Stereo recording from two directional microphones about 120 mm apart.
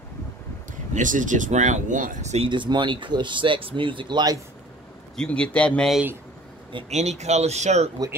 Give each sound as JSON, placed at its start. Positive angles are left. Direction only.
{"t": 0.7, "sound": "speech", "side_deg": -90}
{"t": 2.4, "sound": "speech", "side_deg": -40}
{"t": 5.1, "sound": "speech", "side_deg": 10}
{"t": 6.9, "sound": "speech", "side_deg": -70}